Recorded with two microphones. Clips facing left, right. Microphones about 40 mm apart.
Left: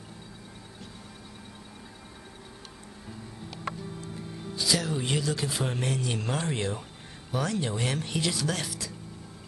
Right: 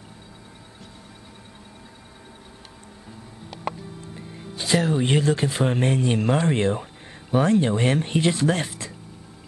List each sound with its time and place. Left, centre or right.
4.0 s music: right
4.6 s speech: right